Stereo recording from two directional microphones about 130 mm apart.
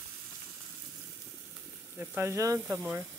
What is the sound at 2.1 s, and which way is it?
Speech, 20° right (ahead or behind).